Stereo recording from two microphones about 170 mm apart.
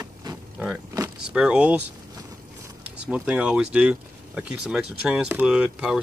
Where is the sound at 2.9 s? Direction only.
5° right (ahead or behind).